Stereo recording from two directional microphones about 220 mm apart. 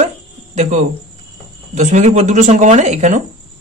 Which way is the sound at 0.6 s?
35° right (ahead or behind).